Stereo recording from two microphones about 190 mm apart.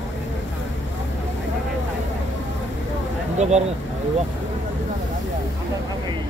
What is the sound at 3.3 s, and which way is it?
Speech, 35° right (ahead or behind).